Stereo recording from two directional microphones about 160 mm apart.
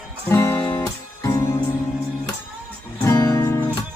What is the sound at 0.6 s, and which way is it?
Music, 30° left (ahead or behind).